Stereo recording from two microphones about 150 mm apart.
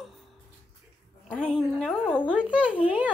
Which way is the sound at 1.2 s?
5° left (ahead or behind).